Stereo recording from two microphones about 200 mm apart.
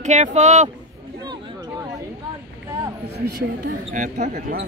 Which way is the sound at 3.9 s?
40° right (ahead or behind).